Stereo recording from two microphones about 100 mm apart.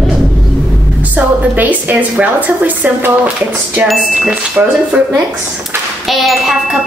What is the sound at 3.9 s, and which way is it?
Speech, 5° right (ahead or behind).